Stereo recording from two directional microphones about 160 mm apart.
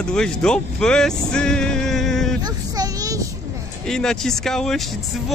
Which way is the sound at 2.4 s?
25° right (ahead or behind).